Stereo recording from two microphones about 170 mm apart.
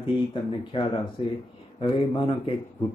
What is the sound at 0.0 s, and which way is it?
Speech, 30° left (ahead or behind).